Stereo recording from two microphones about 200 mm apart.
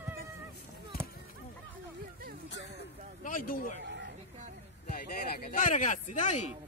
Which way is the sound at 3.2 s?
45° left (ahead or behind).